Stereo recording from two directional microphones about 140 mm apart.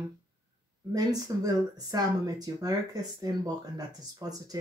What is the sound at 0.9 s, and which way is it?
Speech, 30° right (ahead or behind).